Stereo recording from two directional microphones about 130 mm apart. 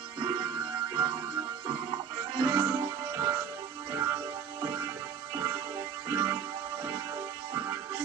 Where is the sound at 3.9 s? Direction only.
30° right (ahead or behind).